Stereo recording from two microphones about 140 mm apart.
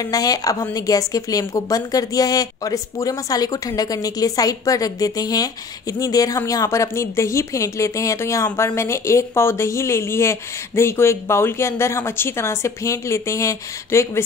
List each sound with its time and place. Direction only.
0.0 s a woman's voice: 25° left (ahead or behind)